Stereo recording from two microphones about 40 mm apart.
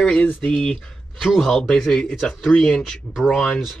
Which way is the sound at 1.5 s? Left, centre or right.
Centre.